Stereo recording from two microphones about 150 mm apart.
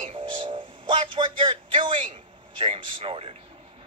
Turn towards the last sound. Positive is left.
turn(degrees=-35)  # may be behind; listen again after turning